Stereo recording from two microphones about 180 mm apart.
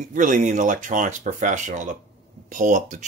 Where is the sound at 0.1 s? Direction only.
45° right (ahead or behind).